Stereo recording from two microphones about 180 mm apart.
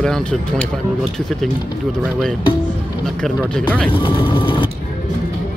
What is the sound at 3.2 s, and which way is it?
Speech, centre (ahead or behind).